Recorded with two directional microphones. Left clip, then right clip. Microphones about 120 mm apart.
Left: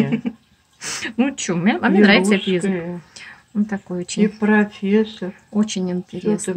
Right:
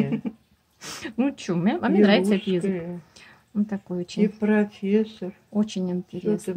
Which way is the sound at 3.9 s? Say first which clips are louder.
Left 4 dB; 30° right (ahead or behind).